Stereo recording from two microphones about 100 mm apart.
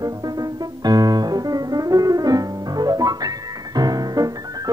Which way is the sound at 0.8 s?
40° right (ahead or behind).